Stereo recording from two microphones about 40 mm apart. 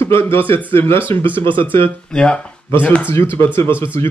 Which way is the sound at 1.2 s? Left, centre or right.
Left.